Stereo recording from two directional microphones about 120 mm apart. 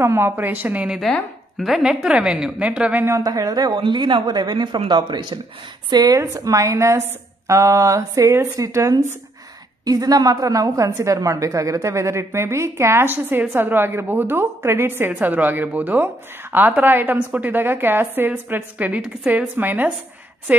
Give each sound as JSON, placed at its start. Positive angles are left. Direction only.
{"t": 0.0, "sound": "a woman's voice", "side_deg": -20}
{"t": 3.2, "sound": "a woman's voice", "side_deg": -30}